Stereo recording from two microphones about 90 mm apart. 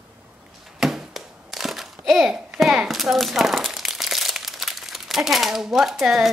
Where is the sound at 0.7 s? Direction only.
Centre (ahead or behind).